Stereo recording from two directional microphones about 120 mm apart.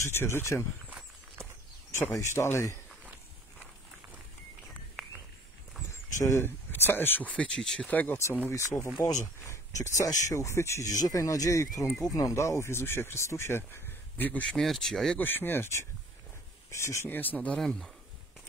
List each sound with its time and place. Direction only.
0.0 s speech: 20° left (ahead or behind)
0.8 s a sound: 15° right (ahead or behind)
2.1 s speech: 20° left (ahead or behind)
5.9 s speech: 25° left (ahead or behind)
14.5 s speech: centre (ahead or behind)
15.1 s speech: 15° left (ahead or behind)